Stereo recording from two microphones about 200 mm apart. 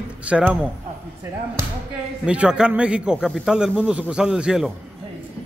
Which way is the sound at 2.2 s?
5° right (ahead or behind).